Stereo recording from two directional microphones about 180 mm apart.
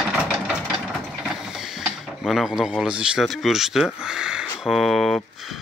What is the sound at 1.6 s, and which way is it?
Speech, 5° right (ahead or behind).